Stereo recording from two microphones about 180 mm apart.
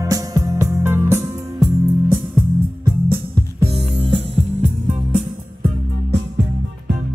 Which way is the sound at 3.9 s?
30° right (ahead or behind).